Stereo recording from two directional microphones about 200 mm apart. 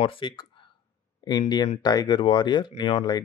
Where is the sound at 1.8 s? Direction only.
20° left (ahead or behind).